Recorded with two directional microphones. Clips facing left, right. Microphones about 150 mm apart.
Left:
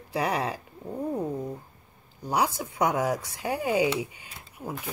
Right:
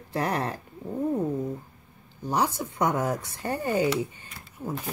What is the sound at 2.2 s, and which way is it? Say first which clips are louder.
Speech: even; 10° left (ahead or behind).